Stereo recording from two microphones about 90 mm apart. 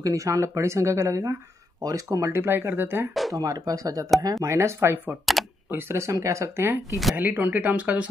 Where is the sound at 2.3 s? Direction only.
25° right (ahead or behind).